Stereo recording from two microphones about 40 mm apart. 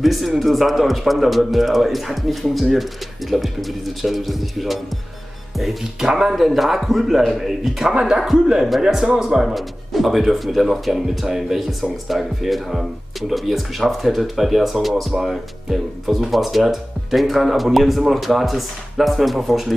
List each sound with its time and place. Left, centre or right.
0.0 s speech: centre
7.9 s a man's voice: centre
9.5 s speech: centre